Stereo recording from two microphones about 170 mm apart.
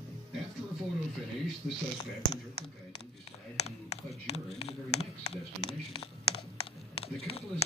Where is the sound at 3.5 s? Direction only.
40° left (ahead or behind).